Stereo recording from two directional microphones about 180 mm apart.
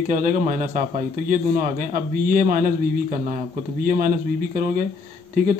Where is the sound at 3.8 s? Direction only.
50° right (ahead or behind).